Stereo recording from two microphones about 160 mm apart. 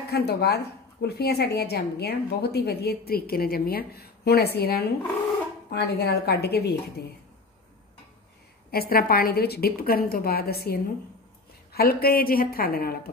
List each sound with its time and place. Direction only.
0.1 s a woman's voice: 85° left
8.7 s a woman's voice: 65° left (ahead or behind)